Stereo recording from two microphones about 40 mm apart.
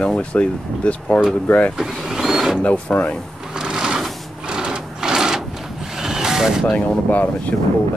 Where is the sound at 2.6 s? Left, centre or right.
Left.